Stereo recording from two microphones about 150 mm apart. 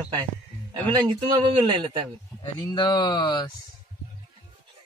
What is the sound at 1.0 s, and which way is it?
Speech, 30° right (ahead or behind).